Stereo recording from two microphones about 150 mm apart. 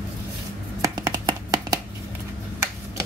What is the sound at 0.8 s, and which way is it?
Finger snapping, 25° right (ahead or behind).